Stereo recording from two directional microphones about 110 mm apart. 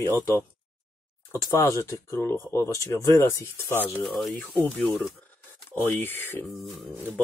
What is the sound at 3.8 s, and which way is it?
Speech, 15° left (ahead or behind).